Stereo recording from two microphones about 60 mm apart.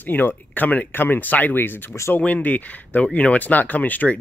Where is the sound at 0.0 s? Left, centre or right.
Left.